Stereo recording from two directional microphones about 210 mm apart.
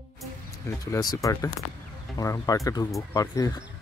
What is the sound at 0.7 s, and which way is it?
Speech, 15° left (ahead or behind).